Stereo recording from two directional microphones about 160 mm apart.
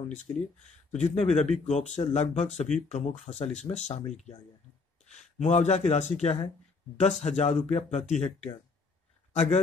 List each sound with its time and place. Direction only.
0.1 s a man's voice: 50° left (ahead or behind)